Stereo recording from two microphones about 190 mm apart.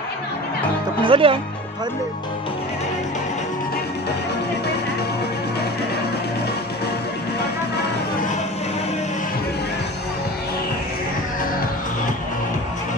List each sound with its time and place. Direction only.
1.0 s speech: 30° right (ahead or behind)